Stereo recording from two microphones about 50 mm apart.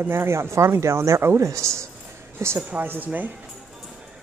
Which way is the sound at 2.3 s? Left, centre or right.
Right.